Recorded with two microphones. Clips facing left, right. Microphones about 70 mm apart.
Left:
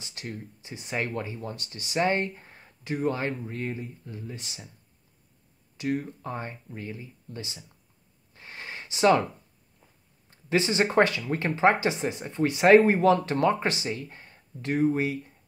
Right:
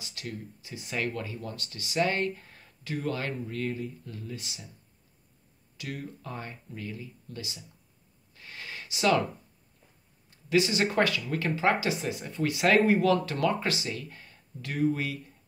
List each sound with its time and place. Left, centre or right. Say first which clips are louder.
0.0 s speech: left 1 dB; left
5.8 s speech: left 9 dB; left
8.3 s gasp: left 2 dB; left
10.3 s speech: left 1 dB; left